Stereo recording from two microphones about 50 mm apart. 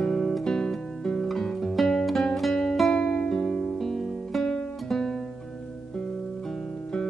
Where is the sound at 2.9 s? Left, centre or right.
Centre.